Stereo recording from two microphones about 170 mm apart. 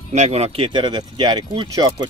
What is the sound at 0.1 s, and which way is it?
Speech, 40° right (ahead or behind).